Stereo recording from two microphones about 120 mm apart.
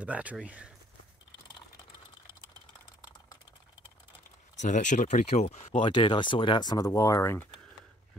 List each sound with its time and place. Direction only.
0.0 s speech: 10° right (ahead or behind)
4.6 s speech: 90° left; by 5.7 s 70° left (ahead or behind)
5.7 s speech: 40° left (ahead or behind); by 7.4 s 25° left (ahead or behind)